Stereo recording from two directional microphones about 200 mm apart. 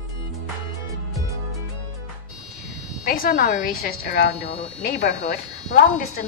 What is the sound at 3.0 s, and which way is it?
Speech, 45° left (ahead or behind).